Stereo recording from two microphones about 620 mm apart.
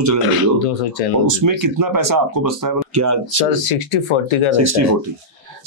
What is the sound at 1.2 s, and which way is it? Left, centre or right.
Speech, right.